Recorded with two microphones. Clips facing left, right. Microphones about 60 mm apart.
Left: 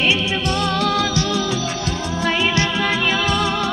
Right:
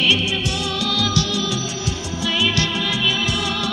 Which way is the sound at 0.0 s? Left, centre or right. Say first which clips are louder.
Left 1 dB; left.